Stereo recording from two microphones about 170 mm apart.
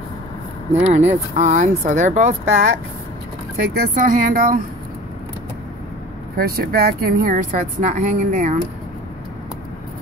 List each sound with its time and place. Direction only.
0.7 s speech: 40° right (ahead or behind)
3.7 s speech: 55° right (ahead or behind)
6.3 s speech: 60° right (ahead or behind); by 8.5 s 45° right (ahead or behind)